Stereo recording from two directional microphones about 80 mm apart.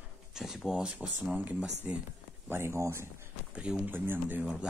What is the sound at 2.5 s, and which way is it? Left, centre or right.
Speech, right.